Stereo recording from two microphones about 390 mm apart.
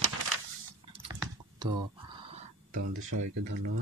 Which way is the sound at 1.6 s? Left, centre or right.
Centre.